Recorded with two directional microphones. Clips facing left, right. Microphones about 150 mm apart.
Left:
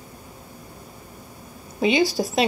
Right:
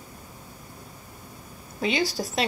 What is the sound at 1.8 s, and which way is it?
Speech, 15° left (ahead or behind).